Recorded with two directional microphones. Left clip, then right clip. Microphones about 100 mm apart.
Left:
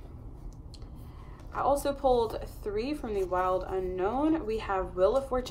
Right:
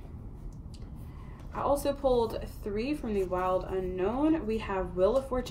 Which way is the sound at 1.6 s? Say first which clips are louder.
Left 1 dB; 65° left (ahead or behind).